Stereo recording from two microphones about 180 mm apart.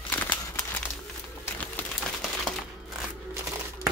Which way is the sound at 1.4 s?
10° left (ahead or behind).